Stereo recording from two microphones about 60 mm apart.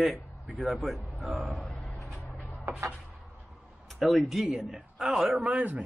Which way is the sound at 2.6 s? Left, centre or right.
Right.